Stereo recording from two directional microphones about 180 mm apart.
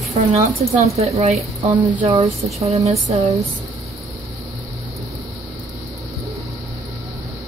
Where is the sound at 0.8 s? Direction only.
35° right (ahead or behind).